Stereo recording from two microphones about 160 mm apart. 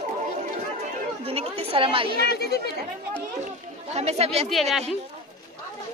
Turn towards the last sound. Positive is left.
turn(degrees=0)  # may be behind; listen again after turning